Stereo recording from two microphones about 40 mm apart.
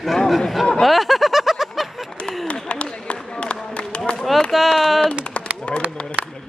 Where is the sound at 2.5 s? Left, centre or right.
Left.